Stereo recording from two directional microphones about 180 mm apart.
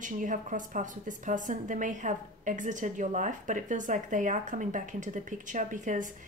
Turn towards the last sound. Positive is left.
turn(degrees=-45)  # may be behind; listen again after turning